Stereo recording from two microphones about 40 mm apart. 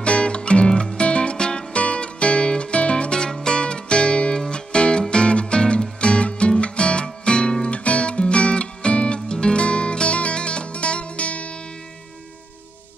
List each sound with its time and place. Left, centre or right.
0.0 s music: left